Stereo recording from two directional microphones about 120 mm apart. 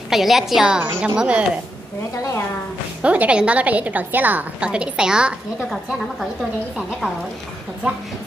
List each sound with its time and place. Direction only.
0.1 s a woman's voice: centre (ahead or behind)
3.0 s a woman's voice: 10° right (ahead or behind)